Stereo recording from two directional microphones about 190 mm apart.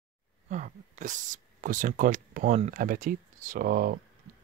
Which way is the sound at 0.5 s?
40° right (ahead or behind).